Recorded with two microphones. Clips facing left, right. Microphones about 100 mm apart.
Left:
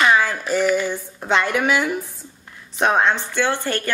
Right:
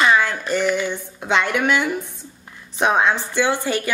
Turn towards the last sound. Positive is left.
turn(degrees=-10)  # may be behind; listen again after turning